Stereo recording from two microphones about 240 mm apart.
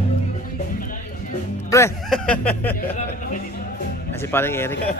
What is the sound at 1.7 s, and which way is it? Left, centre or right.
Speech, centre.